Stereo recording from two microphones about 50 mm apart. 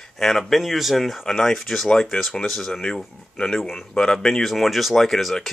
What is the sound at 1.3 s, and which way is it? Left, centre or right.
Speech, centre.